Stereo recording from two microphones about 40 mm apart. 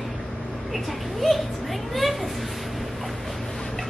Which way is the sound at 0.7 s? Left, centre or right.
Centre.